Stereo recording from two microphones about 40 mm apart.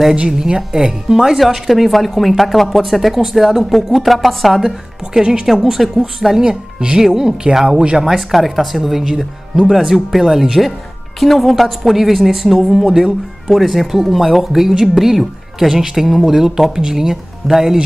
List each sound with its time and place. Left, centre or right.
0.3 s speech: centre
4.6 s speech: centre
5.5 s speech: centre
6.4 s speech: centre
11.1 s speech: centre
16.1 s speech: centre